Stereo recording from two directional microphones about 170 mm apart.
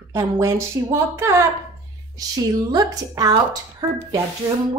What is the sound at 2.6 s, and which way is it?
Speech, 20° right (ahead or behind).